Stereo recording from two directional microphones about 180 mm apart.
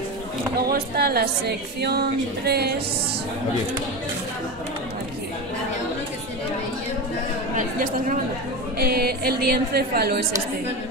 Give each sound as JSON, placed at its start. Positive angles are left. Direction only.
{"t": 0.7, "sound": "a woman's voice", "side_deg": -60}
{"t": 7.5, "sound": "speech", "side_deg": -45}
{"t": 8.7, "sound": "a woman's voice", "side_deg": -60}